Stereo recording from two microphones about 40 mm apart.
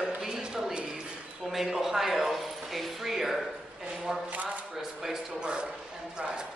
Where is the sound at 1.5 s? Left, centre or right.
Centre.